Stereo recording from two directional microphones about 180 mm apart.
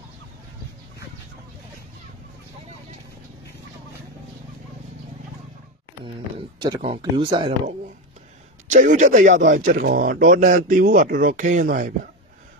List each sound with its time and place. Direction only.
6.0 s a sound: 25° right (ahead or behind)
7.0 s speech: 30° right (ahead or behind)
8.6 s speech: 45° right (ahead or behind)